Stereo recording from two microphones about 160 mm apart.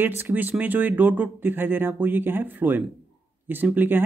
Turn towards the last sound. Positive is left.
turn(degrees=-10)  # may be behind; listen again after turning